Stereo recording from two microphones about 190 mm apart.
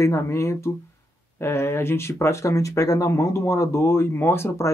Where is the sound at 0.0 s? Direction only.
15° left (ahead or behind).